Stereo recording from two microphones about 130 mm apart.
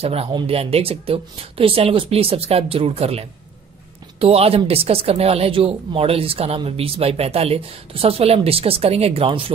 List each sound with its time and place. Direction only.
0.0 s speech: 50° right (ahead or behind)